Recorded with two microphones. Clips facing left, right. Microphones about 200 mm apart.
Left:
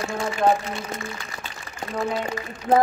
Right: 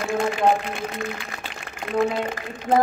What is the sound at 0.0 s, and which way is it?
Speech, 60° right (ahead or behind).